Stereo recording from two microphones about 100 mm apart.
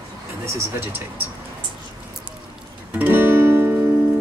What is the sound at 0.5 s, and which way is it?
Speech, 25° right (ahead or behind).